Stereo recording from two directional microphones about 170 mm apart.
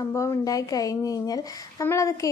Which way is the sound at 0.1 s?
20° left (ahead or behind).